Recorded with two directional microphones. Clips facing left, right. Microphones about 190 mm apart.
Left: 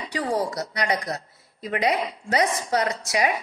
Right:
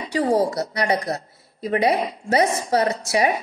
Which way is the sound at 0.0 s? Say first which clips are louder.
Right 6 dB; 30° right (ahead or behind).